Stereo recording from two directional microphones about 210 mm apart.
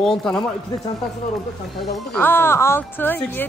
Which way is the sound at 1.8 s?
5° left (ahead or behind).